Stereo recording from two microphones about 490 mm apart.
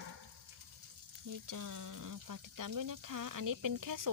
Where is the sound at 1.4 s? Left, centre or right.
Right.